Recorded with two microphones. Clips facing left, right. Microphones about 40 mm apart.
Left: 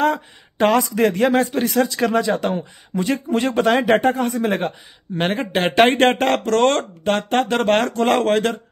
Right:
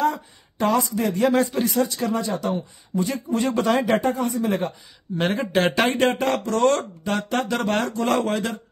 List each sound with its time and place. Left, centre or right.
0.0 s speech: left
1.3 s a man's voice: left
1.7 s speech: left
3.0 s a man's voice: left
5.8 s a man's voice: left